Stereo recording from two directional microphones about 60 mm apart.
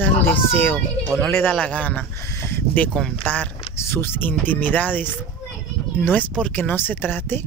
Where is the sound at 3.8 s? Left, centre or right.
Left.